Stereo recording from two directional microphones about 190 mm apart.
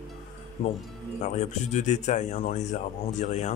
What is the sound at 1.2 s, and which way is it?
Speech, 35° left (ahead or behind).